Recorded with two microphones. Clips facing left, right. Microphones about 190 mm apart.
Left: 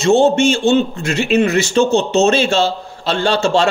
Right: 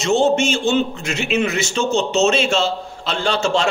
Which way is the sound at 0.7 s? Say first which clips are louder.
Left 4 dB; 50° left (ahead or behind).